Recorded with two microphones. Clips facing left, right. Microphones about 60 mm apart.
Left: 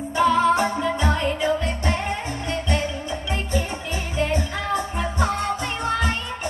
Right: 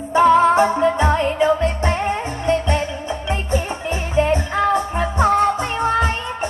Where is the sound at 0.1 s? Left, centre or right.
Right.